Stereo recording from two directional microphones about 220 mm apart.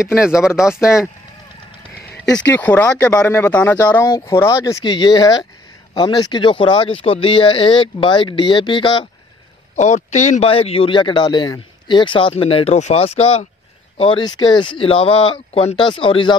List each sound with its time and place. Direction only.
0.2 s speech: 5° right (ahead or behind)
2.2 s speech: 5° left (ahead or behind); by 9.1 s 20° left (ahead or behind)
9.8 s speech: 30° left (ahead or behind)